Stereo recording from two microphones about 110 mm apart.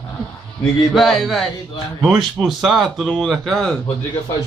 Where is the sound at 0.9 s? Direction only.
Centre (ahead or behind).